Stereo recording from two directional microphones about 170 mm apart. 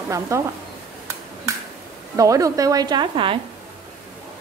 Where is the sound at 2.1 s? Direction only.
20° right (ahead or behind).